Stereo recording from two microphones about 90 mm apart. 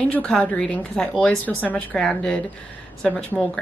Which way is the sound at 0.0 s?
10° left (ahead or behind).